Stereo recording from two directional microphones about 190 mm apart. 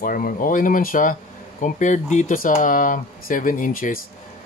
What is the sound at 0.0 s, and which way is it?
Speech, 45° left (ahead or behind).